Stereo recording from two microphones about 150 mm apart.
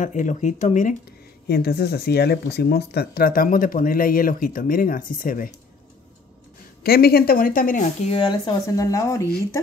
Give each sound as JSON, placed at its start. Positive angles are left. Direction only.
{"t": 0.0, "sound": "speech", "side_deg": 55}
{"t": 1.5, "sound": "speech", "side_deg": 90}
{"t": 6.8, "sound": "speech", "side_deg": 90}
{"t": 8.1, "sound": "speech", "side_deg": 30}